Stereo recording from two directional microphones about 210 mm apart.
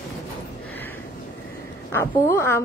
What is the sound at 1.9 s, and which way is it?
Speech, 10° left (ahead or behind).